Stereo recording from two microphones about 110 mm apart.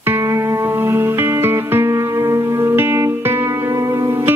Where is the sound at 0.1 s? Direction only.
25° right (ahead or behind).